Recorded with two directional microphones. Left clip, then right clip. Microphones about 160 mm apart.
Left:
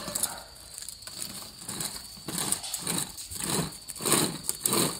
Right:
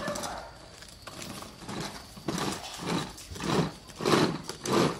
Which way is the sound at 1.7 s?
5° left (ahead or behind).